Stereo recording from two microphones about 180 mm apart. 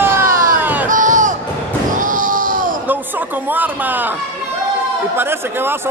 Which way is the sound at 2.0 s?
50° right (ahead or behind).